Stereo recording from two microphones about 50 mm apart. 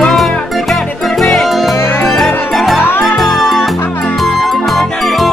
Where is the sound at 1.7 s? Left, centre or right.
Left.